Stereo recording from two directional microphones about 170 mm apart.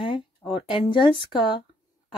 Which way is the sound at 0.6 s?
30° left (ahead or behind).